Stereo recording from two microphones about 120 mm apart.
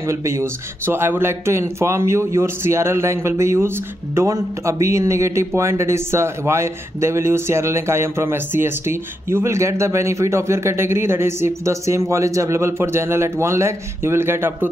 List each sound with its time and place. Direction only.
0.0 s speech: 25° right (ahead or behind)